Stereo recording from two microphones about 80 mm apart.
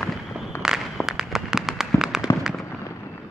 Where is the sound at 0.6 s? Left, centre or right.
Centre.